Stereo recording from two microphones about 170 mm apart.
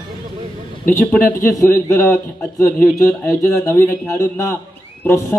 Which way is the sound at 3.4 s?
20° left (ahead or behind).